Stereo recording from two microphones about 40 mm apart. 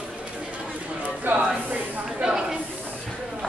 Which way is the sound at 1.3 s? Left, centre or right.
Right.